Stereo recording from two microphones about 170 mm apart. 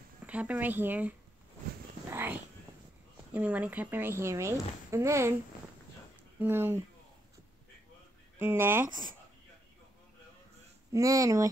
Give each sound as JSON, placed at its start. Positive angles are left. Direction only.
{"t": 0.3, "sound": "speech", "side_deg": -10}
{"t": 2.0, "sound": "a sound", "side_deg": -10}
{"t": 3.3, "sound": "speech", "side_deg": -10}
{"t": 6.4, "sound": "speech", "side_deg": -15}
{"t": 8.4, "sound": "speech", "side_deg": -10}
{"t": 10.9, "sound": "speech", "side_deg": -20}